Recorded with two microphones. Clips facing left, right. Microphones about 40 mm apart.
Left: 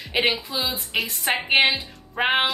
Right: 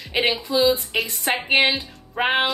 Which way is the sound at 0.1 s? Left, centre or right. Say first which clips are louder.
Right 1 dB; centre.